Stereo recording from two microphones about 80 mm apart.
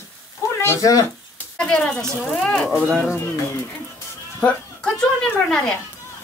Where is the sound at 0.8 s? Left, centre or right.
Left.